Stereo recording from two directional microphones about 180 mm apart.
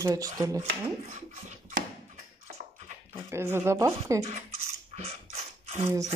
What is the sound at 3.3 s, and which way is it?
Speech, 15° right (ahead or behind).